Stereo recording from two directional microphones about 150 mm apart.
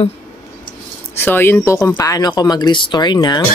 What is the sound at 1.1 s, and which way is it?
Speech, 15° left (ahead or behind).